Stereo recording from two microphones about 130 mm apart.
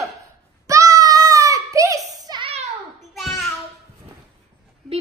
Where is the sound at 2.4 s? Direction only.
50° right (ahead or behind).